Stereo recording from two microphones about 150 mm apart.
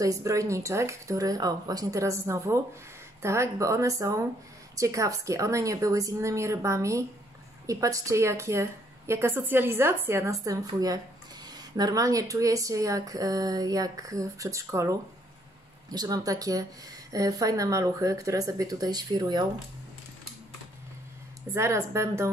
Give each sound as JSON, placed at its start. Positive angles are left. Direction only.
{"t": 0.0, "sound": "speech", "side_deg": -20}
{"t": 21.5, "sound": "speech", "side_deg": -20}